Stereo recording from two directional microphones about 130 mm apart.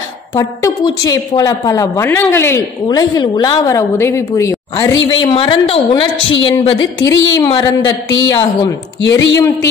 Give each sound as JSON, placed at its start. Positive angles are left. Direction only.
{"t": 0.3, "sound": "a woman's voice", "side_deg": 25}
{"t": 2.9, "sound": "a woman's voice", "side_deg": 30}